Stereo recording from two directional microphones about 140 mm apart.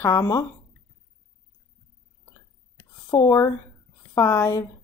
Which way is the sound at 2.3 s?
20° left (ahead or behind).